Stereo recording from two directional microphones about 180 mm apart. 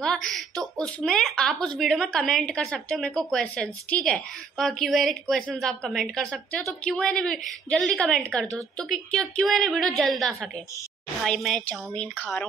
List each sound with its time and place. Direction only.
0.0 s speech: 5° left (ahead or behind)